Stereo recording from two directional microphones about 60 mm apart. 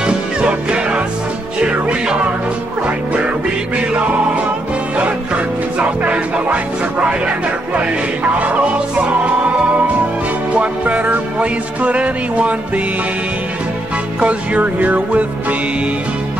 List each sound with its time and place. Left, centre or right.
0.0 s music: centre
4.9 s music: right
8.4 s music: right
10.6 s music: right
14.2 s music: right